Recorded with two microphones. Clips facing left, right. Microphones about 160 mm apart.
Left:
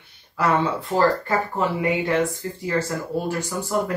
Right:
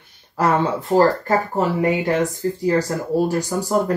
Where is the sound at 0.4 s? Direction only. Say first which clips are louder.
Right 3 dB; 40° right (ahead or behind).